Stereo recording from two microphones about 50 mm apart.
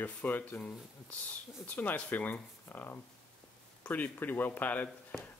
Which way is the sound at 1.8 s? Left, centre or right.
Left.